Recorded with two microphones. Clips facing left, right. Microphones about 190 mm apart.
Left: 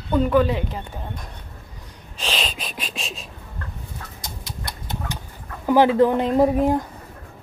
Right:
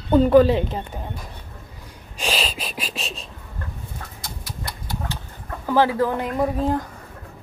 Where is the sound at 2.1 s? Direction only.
10° right (ahead or behind).